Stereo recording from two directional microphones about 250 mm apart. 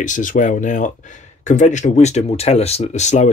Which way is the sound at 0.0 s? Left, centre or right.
Left.